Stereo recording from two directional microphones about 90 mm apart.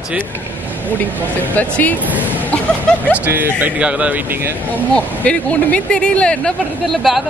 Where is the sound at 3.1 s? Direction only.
20° right (ahead or behind).